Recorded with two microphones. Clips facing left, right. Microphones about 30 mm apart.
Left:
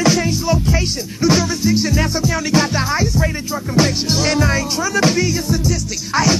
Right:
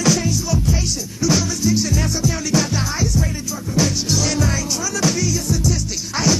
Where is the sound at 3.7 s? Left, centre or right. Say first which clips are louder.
Left 3 dB; left.